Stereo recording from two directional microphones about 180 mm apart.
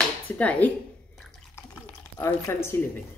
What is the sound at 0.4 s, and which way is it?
Speech, 5° left (ahead or behind).